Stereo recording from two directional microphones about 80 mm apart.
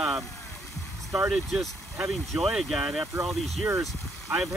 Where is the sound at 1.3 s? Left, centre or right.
Centre.